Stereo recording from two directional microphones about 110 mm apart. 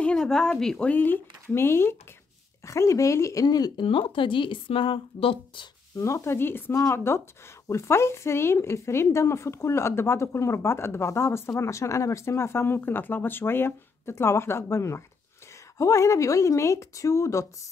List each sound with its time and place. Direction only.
0.0 s a woman's voice: 5° left (ahead or behind); by 3.8 s 35° left (ahead or behind)
3.8 s speech: 55° left (ahead or behind)
5.9 s a woman's voice: 25° left (ahead or behind)
6.7 s a woman's voice: 30° left (ahead or behind)